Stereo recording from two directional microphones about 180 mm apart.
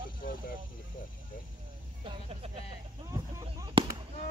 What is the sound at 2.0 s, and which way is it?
Vehicle, 30° right (ahead or behind).